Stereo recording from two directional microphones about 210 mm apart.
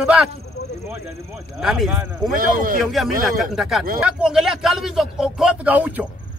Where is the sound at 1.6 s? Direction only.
Centre (ahead or behind).